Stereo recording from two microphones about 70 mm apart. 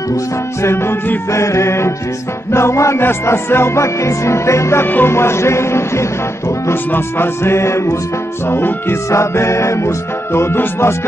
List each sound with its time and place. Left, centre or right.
0.1 s music: left
4.8 s music: left
5.1 s music: left